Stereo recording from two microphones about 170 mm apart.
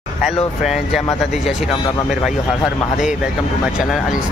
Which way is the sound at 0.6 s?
Centre (ahead or behind).